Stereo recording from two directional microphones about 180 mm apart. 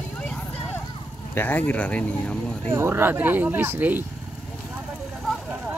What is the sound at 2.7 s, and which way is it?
Speech, 10° right (ahead or behind).